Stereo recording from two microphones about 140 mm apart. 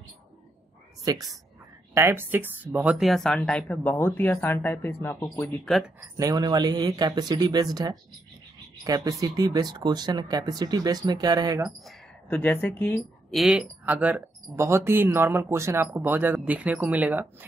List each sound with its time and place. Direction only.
1.1 s speech: 30° right (ahead or behind)
2.0 s speech: 15° right (ahead or behind); by 5.5 s 15° left (ahead or behind)
5.9 s speech: 25° right (ahead or behind)
12.3 s speech: 10° left (ahead or behind)
13.3 s speech: centre (ahead or behind)